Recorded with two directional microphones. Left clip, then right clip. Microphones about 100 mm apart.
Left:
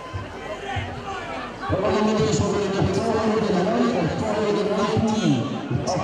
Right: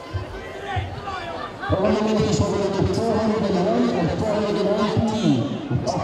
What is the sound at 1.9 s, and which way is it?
Music, 55° left (ahead or behind).